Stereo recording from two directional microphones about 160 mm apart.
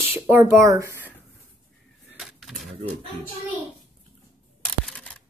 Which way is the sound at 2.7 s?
35° right (ahead or behind).